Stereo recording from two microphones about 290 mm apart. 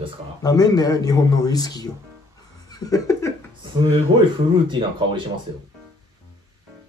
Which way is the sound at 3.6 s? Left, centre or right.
Centre.